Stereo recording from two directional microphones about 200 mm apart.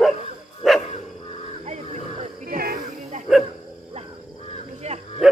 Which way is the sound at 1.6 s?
35° right (ahead or behind).